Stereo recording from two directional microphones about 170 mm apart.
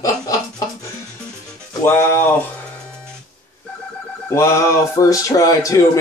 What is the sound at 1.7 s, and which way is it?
Speech, 15° left (ahead or behind).